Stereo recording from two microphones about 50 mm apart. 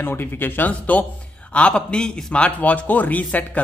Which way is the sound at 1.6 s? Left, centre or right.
Left.